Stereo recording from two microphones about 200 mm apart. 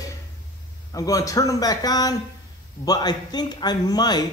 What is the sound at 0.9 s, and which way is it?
A man's voice, 15° left (ahead or behind).